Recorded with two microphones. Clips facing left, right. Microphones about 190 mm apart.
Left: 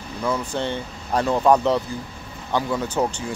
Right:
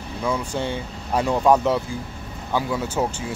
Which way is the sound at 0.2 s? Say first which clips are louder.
Even; 10° right (ahead or behind).